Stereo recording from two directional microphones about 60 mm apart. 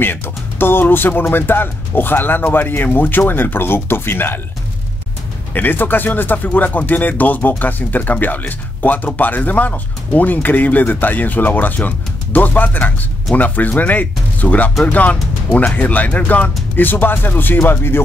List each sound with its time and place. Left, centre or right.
0.0 s speech: left
5.5 s speech: left